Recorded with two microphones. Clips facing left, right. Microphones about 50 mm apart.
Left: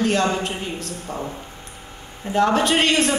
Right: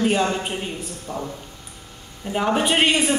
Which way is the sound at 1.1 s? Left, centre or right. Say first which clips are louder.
Even; left.